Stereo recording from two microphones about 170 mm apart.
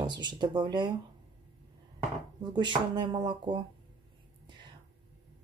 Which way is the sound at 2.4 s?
25° right (ahead or behind).